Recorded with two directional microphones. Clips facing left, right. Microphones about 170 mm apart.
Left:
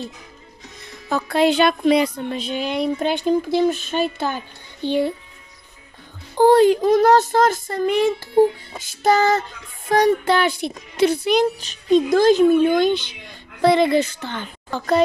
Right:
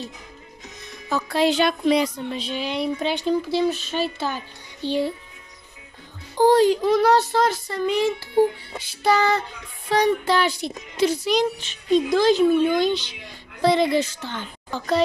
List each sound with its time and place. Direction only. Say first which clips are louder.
1.0 s a woman's voice: left 3 dB; 55° left (ahead or behind)
6.3 s a woman's voice: left 3 dB; 55° left (ahead or behind)